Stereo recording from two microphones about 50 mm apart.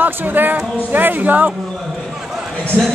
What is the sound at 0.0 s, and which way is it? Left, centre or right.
Speech, right.